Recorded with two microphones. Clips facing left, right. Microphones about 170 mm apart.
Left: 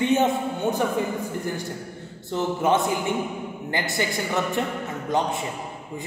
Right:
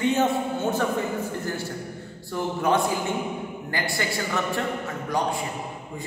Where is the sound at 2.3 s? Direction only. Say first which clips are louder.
Left 2 dB; 20° left (ahead or behind).